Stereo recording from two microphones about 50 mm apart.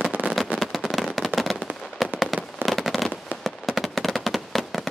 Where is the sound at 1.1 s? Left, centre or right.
Centre.